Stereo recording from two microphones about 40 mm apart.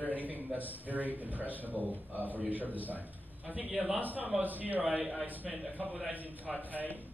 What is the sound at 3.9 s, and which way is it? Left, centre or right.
Speech, right.